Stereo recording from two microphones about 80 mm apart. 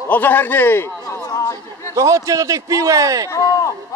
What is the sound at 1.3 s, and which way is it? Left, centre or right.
Chatter, left.